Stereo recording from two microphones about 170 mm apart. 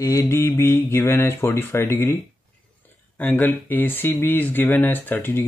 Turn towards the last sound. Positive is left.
turn(degrees=10)  # may be behind; listen again after turning